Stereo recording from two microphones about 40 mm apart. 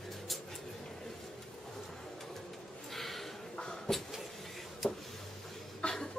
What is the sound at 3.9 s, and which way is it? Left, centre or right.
Vehicle, centre.